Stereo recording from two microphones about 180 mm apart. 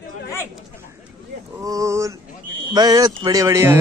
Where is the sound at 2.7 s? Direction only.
20° right (ahead or behind).